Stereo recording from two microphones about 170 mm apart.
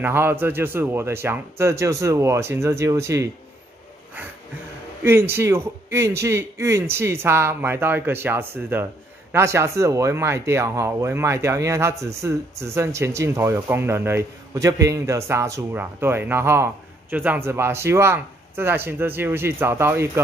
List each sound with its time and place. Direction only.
0.0 s speech: 15° right (ahead or behind)
5.0 s speech: 15° right (ahead or behind)